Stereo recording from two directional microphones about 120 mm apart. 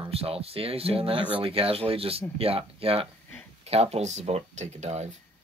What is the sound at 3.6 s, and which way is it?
Speech, 60° right (ahead or behind).